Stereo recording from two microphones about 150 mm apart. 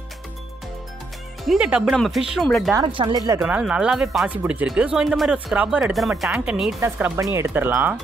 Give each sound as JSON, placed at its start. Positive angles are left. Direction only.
{"t": 1.4, "sound": "speech", "side_deg": -5}
{"t": 2.7, "sound": "speech", "side_deg": -30}
{"t": 3.4, "sound": "speech", "side_deg": -10}
{"t": 6.8, "sound": "speech", "side_deg": -20}